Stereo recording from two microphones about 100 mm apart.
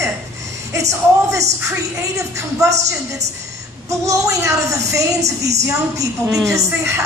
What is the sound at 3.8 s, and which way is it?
A woman's voice, 30° right (ahead or behind).